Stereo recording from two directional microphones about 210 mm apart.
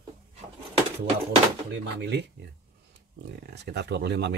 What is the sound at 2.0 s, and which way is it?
Speech, 55° right (ahead or behind).